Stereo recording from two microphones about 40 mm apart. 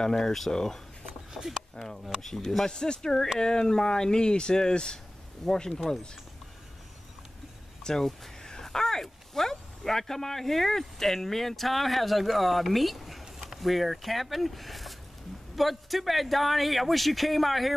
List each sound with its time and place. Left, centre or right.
0.0 s speech: centre
2.6 s speech: centre
7.8 s speech: centre